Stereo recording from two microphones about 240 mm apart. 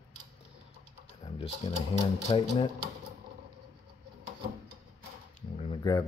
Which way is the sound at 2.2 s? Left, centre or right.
Left.